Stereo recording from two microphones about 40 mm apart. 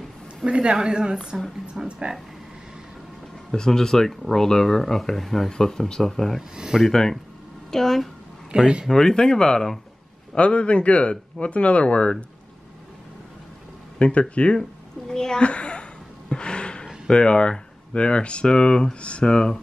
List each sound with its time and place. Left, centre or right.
0.5 s a woman's voice: right
3.5 s speech: centre
6.5 s speech: centre
6.9 s speech: centre
8.5 s a woman's voice: right
8.9 s speech: centre
13.9 s speech: left
14.6 s a sound: centre
15.4 s a sound: left
17.1 s speech: left